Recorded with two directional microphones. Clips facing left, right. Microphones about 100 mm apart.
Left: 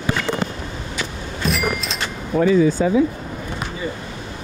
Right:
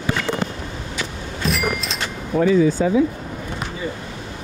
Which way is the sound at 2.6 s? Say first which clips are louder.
Even; 25° left (ahead or behind).